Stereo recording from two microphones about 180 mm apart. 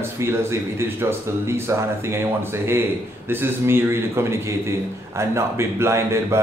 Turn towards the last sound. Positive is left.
turn(degrees=-15)  # may be behind; listen again after turning